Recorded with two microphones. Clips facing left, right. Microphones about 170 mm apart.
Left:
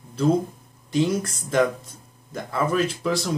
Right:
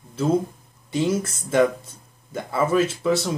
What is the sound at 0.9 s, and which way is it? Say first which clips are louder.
Speech: even; 5° right (ahead or behind).